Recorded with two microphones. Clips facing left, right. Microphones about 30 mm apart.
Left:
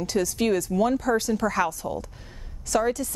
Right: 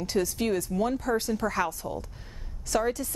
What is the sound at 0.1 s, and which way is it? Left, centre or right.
Speech, centre.